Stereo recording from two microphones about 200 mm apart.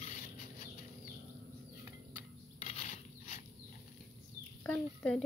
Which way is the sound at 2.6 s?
35° left (ahead or behind).